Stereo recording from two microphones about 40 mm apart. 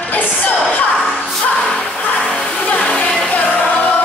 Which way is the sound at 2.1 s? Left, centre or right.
Left.